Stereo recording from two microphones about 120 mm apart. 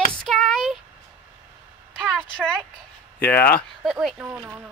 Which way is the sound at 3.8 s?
Centre (ahead or behind).